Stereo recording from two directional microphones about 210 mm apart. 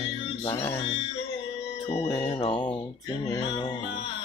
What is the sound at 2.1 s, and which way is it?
Music, 20° left (ahead or behind).